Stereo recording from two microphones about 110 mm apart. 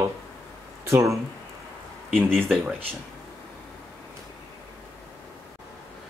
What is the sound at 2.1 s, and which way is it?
Speech, 5° left (ahead or behind).